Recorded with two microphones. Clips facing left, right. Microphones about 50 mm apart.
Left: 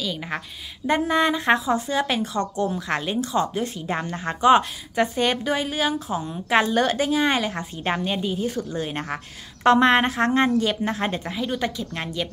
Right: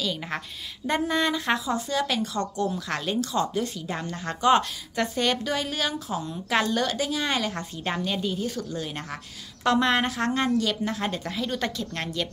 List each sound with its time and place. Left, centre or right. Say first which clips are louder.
0.0 s a woman's voice: left 1 dB; centre
0.8 s a woman's voice: left 4 dB; centre